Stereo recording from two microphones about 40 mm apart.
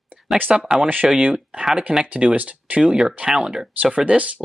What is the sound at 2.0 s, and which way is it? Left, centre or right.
Speech, right.